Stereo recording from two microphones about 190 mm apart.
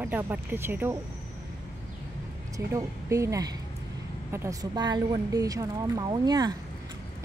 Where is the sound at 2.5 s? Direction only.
15° right (ahead or behind).